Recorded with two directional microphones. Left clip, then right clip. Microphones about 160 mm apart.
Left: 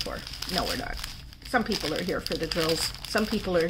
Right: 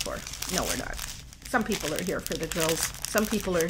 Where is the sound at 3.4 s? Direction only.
20° right (ahead or behind).